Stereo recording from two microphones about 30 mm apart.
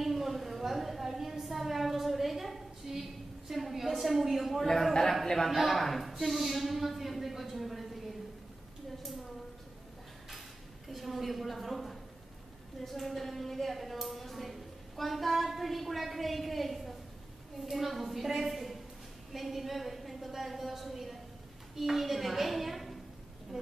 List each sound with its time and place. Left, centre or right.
0.0 s a sound: centre
4.6 s a man's voice: centre
5.5 s a woman's voice: centre
10.9 s a woman's voice: centre